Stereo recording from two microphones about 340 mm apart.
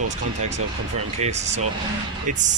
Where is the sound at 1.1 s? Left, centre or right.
Centre.